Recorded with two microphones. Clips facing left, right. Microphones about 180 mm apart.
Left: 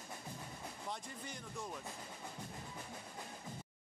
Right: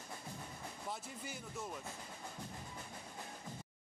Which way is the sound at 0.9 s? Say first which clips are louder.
Right 1 dB; 5° right (ahead or behind).